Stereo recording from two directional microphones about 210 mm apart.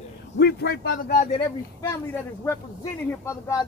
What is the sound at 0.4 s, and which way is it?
Speech, 50° left (ahead or behind).